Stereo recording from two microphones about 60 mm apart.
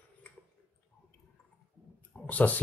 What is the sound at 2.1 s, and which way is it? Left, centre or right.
Speech, left.